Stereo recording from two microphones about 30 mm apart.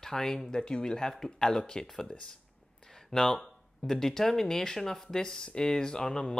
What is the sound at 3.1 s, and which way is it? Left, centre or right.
Speech, centre.